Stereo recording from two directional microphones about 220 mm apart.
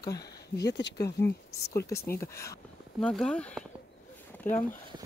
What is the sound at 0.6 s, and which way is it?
Speech, 50° left (ahead or behind).